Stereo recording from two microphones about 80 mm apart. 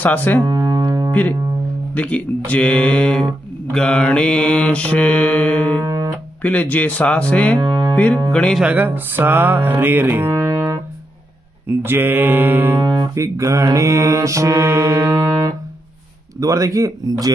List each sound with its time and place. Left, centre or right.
0.0 s speech: left
0.5 s music: right
2.0 s mantra: centre
5.9 s music: right
6.4 s mantra: centre
7.5 s music: right
7.9 s speech: centre
8.3 s mantra: centre
8.7 s music: right
10.3 s music: right
11.6 s music: right
12.8 s speech: right
13.1 s mantra: right
16.3 s speech: right